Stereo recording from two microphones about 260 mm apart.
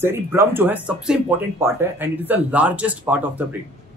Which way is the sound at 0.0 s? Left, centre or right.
Centre.